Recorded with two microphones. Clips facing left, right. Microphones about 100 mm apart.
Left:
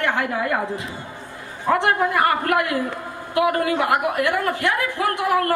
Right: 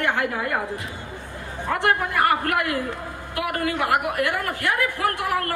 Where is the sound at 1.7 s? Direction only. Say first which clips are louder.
Left 4 dB; 20° left (ahead or behind).